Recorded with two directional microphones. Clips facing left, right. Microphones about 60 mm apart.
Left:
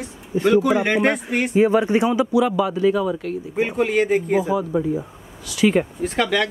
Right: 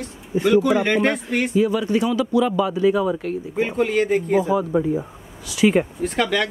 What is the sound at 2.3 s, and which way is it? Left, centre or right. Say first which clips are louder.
Speech: left 1 dB; centre.